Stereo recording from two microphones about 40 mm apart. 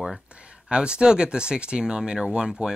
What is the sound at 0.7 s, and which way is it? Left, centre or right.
Speech, right.